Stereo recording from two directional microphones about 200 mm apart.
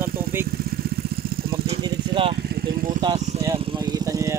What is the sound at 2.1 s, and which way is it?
Speech, 25° right (ahead or behind).